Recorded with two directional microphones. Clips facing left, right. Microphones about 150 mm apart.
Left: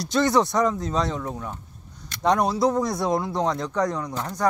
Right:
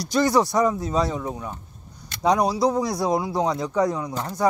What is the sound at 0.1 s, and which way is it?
Speech, 5° right (ahead or behind).